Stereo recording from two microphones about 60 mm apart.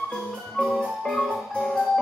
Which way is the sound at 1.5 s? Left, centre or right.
Centre.